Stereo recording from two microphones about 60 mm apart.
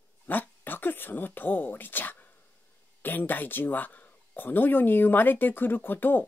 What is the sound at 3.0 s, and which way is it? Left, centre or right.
Speech, left.